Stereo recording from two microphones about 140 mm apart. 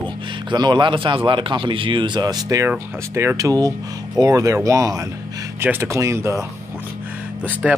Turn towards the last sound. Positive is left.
turn(degrees=-5)  # may be behind; listen again after turning